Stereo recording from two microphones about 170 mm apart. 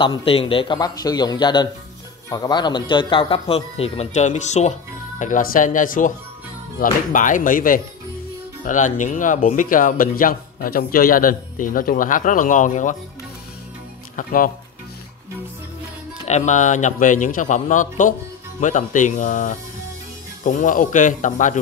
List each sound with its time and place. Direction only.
0.0 s a man's voice: 30° left (ahead or behind)
5.2 s speech: 55° left (ahead or behind)
14.1 s speech: 55° left (ahead or behind)
16.3 s speech: 45° left (ahead or behind)